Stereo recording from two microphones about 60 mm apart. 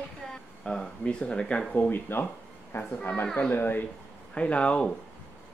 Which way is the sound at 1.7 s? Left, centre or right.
Left.